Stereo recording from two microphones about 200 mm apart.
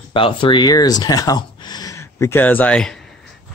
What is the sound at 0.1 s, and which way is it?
Speech, 25° left (ahead or behind).